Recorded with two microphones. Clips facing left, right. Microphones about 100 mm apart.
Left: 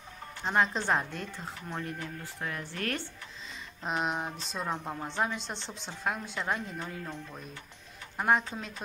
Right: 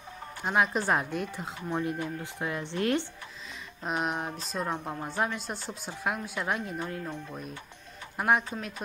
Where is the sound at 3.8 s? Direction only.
Centre (ahead or behind).